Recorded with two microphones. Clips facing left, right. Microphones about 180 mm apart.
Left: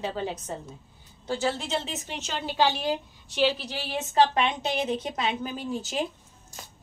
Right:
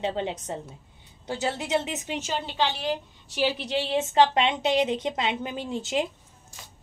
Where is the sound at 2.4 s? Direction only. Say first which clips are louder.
Left 7 dB; 5° left (ahead or behind).